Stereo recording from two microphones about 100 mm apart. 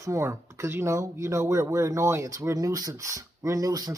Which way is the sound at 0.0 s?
30° right (ahead or behind).